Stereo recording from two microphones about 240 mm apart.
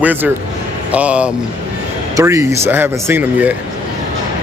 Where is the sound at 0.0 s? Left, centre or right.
Centre.